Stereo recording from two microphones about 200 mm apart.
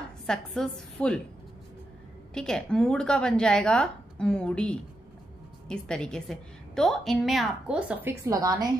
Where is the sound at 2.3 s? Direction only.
5° left (ahead or behind).